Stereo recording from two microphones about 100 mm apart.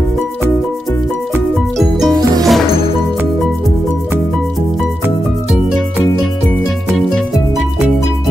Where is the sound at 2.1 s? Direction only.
40° right (ahead or behind).